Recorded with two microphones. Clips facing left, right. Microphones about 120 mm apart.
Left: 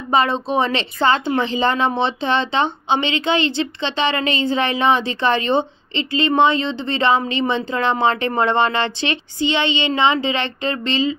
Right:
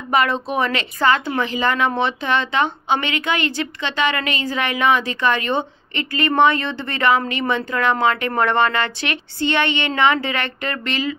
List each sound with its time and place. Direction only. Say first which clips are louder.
0.1 s speech: left 2 dB; 25° left (ahead or behind)